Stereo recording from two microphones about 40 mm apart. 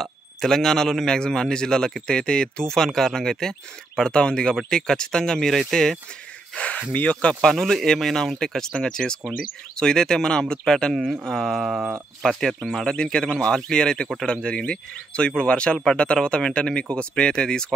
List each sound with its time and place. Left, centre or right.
0.0 s speech: centre
6.9 s speech: left
7.4 s speech: centre
12.7 s speech: centre